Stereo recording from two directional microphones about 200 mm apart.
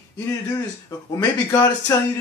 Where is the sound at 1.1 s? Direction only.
15° left (ahead or behind).